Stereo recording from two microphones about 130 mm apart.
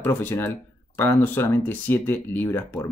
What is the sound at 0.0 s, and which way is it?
Speech, 15° left (ahead or behind).